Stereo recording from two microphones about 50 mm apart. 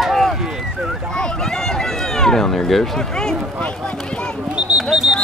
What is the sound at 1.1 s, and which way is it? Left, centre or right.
Run, centre.